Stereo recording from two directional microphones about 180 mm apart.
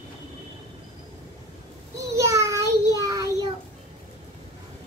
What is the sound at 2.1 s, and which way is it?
Child singing, 15° right (ahead or behind).